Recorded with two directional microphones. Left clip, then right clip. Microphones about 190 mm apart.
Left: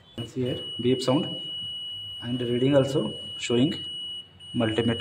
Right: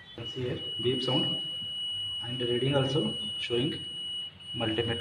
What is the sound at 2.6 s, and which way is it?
A man's voice, 70° left (ahead or behind).